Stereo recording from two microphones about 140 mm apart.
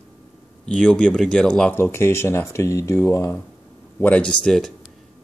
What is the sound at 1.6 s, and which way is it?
Speech, 15° left (ahead or behind).